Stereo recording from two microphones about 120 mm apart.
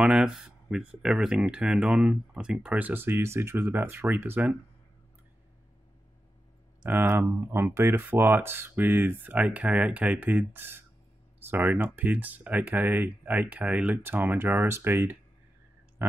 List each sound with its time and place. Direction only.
0.0 s speech: 5° right (ahead or behind)
6.8 s speech: 15° right (ahead or behind)